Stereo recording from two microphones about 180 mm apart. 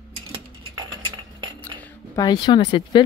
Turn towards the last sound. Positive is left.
turn(degrees=25)  # may be behind; listen again after turning